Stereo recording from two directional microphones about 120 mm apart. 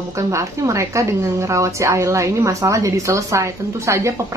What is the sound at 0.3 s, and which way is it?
Speech, 25° right (ahead or behind).